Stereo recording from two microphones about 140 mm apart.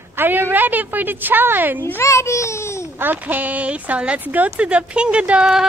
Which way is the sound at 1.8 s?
20° left (ahead or behind).